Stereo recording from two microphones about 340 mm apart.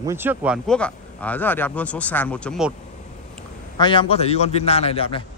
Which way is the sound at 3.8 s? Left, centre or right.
Centre.